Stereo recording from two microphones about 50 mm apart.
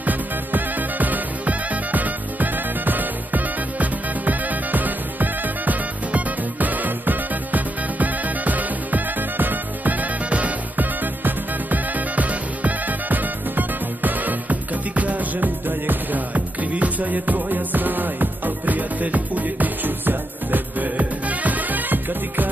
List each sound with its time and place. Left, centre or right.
0.0 s music: right